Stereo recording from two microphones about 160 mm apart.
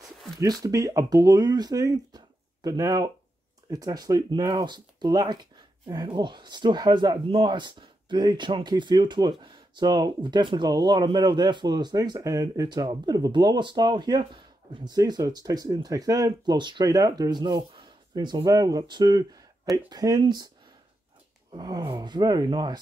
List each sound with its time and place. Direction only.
0.4 s speech: 20° right (ahead or behind)
21.5 s speech: 25° right (ahead or behind)